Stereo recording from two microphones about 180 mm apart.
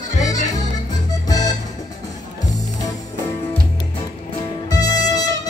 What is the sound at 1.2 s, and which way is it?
Music, 20° left (ahead or behind).